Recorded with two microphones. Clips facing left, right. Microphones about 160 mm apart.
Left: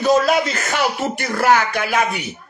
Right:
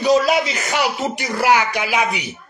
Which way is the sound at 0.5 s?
15° right (ahead or behind).